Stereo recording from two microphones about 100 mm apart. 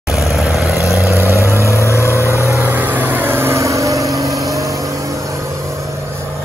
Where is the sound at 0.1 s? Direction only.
Centre (ahead or behind).